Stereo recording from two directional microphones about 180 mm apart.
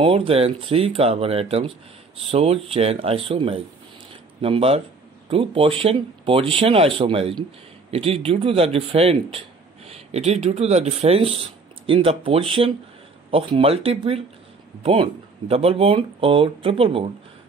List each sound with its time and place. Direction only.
0.0 s speech: 30° right (ahead or behind)